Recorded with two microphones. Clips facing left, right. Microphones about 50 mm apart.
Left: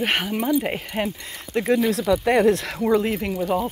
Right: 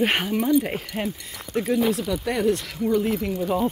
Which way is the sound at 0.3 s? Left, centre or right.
Centre.